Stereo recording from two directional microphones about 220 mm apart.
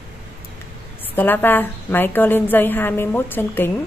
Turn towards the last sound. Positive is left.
turn(degrees=10)  # may be behind; listen again after turning